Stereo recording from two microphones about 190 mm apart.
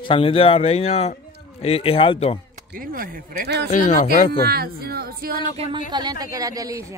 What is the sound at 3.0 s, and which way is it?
Speech, 55° right (ahead or behind).